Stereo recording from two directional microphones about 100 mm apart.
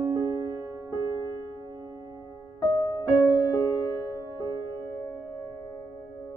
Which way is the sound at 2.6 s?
40° left (ahead or behind).